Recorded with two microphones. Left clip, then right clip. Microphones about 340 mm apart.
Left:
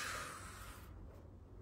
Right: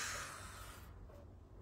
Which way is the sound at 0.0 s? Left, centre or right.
Centre.